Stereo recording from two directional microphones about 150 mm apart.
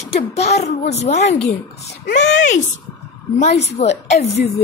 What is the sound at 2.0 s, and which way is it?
Female singing, 55° left (ahead or behind).